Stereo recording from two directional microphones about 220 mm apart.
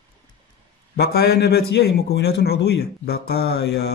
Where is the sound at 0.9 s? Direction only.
45° left (ahead or behind).